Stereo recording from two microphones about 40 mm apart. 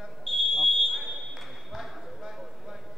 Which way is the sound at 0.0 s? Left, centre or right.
Centre.